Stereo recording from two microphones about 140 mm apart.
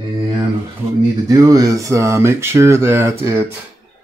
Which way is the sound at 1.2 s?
25° right (ahead or behind).